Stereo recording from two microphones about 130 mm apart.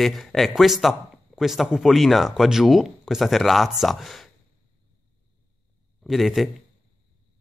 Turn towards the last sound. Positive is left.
turn(degrees=0)  # may be behind; listen again after turning